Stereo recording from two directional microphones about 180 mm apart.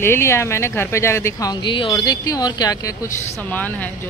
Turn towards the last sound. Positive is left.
turn(degrees=10)  # may be behind; listen again after turning